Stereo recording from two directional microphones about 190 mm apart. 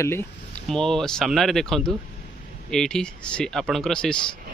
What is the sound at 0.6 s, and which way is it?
Speech, centre (ahead or behind).